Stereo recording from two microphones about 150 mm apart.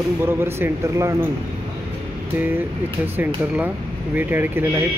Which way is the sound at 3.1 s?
10° right (ahead or behind).